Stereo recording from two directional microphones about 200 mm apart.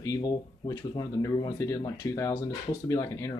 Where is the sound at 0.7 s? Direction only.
20° left (ahead or behind).